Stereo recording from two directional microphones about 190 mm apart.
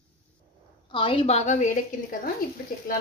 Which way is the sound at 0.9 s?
25° left (ahead or behind).